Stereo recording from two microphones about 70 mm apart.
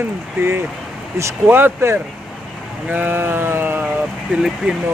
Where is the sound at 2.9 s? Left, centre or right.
Right.